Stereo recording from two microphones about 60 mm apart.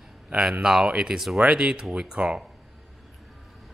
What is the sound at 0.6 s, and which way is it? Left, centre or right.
Speech, centre.